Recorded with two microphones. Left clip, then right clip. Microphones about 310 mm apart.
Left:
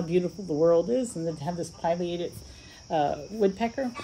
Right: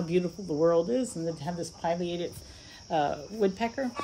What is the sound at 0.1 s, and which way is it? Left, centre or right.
Speech, centre.